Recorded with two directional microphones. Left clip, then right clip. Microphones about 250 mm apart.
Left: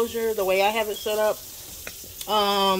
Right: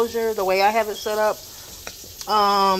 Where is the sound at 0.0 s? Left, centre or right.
Centre.